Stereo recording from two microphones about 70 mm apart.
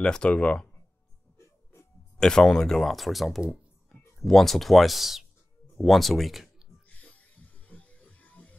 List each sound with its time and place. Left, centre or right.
0.0 s speech: centre
2.1 s speech: centre
6.9 s music: left